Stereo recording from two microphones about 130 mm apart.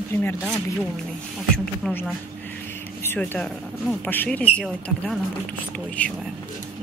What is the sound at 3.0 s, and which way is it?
Speech, 15° left (ahead or behind).